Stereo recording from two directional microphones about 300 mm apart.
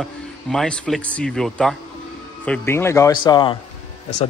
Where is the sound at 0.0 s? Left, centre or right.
Centre.